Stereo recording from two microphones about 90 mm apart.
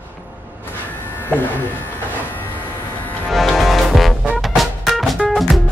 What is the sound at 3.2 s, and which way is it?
Music, centre (ahead or behind).